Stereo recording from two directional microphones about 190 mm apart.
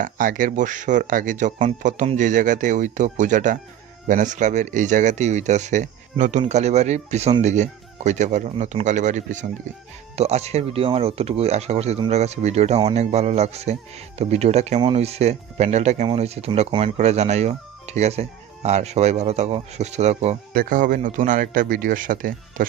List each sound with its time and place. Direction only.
0.0 s speech: 45° right (ahead or behind)